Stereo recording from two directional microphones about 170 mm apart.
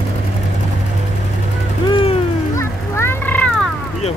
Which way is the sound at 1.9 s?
35° left (ahead or behind).